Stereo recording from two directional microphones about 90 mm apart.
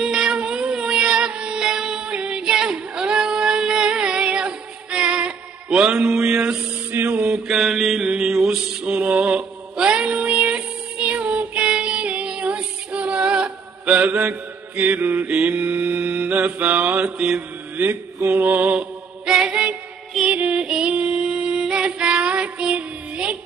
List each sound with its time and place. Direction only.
0.0 s music: 5° right (ahead or behind)
7.0 s mantra: 15° right (ahead or behind)
20.2 s music: 10° right (ahead or behind)